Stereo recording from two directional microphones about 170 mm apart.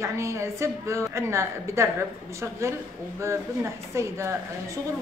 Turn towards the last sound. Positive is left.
turn(degrees=-15)  # may be behind; listen again after turning